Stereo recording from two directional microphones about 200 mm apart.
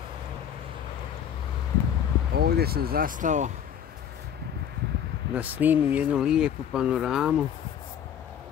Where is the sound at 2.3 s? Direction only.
50° right (ahead or behind).